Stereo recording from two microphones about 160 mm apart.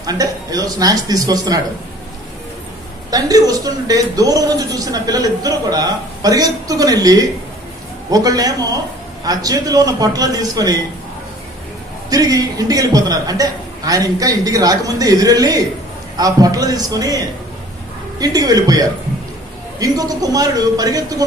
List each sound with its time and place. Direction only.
0.0 s a man's voice: 25° right (ahead or behind)
3.1 s a man's voice: 25° right (ahead or behind)
12.1 s a man's voice: 20° right (ahead or behind)